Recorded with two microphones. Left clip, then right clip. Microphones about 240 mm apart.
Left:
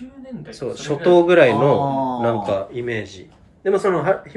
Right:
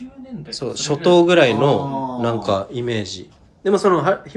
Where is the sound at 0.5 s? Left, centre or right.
Centre.